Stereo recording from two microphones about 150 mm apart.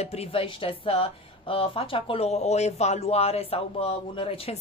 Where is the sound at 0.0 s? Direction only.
45° left (ahead or behind).